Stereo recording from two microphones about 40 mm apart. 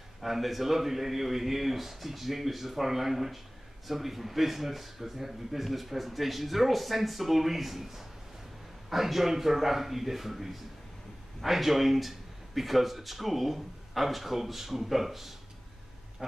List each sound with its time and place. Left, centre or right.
0.2 s speech: centre
16.2 s quack: centre